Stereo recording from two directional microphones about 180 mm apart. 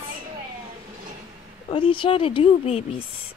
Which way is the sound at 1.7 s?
30° left (ahead or behind).